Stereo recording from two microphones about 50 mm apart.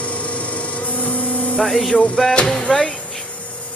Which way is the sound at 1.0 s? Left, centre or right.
Left.